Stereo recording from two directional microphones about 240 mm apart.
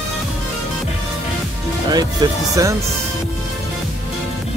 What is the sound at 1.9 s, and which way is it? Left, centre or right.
Speech, centre.